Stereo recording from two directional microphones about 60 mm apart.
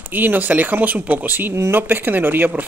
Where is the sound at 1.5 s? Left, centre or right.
Right.